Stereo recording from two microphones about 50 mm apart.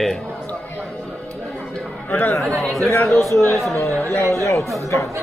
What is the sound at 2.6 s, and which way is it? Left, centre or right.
Speech, centre.